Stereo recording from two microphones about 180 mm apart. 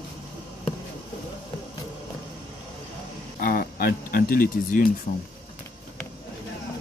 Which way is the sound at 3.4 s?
55° left (ahead or behind).